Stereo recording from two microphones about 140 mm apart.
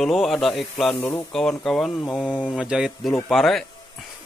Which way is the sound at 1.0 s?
15° left (ahead or behind).